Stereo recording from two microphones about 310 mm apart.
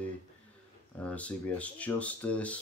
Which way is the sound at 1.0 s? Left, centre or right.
Centre.